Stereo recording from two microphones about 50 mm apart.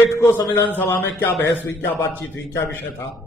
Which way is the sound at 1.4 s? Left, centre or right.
Left.